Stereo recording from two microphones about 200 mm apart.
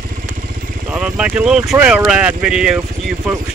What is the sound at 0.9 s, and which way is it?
Speech, 5° right (ahead or behind).